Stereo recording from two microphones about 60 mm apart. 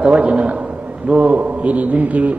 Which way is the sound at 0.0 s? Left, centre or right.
Centre.